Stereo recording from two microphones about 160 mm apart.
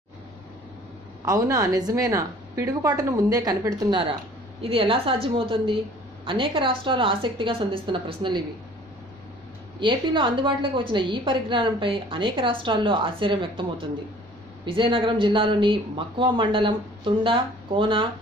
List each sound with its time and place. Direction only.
1.2 s a woman's voice: 20° right (ahead or behind)
4.6 s a woman's voice: 35° right (ahead or behind)
9.8 s a woman's voice: 30° right (ahead or behind)